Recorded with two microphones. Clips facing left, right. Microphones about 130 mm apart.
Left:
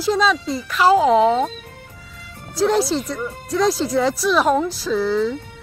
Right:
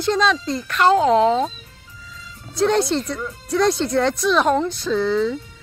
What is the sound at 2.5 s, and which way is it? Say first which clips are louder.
Speech: even; centre (ahead or behind).